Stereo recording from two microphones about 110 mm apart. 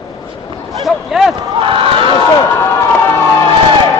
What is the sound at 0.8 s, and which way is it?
Speech, centre (ahead or behind).